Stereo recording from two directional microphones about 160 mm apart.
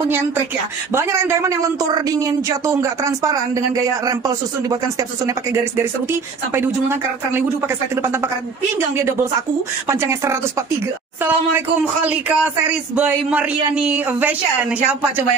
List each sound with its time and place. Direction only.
0.9 s speech: 15° right (ahead or behind)
6.5 s a woman's voice: 15° right (ahead or behind)